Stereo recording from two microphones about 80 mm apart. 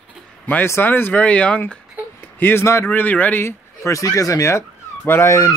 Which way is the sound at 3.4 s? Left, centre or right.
Left.